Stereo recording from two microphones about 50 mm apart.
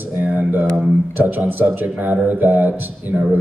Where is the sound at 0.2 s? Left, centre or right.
Right.